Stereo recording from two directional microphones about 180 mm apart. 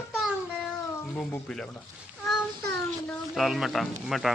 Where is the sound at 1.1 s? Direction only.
5° left (ahead or behind).